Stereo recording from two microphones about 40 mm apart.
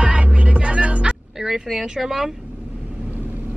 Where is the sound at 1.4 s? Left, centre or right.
Centre.